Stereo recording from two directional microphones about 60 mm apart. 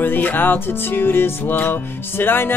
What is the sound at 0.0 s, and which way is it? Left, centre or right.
Music, left.